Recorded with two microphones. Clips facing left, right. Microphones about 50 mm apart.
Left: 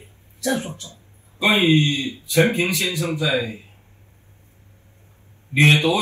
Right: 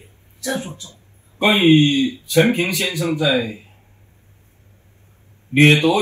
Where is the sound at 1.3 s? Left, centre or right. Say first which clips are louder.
Right 4 dB; right.